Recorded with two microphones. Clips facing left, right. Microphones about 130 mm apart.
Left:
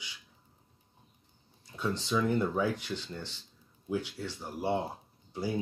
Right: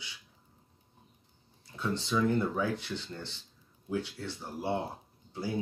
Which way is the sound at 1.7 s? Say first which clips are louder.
Even; 15° left (ahead or behind).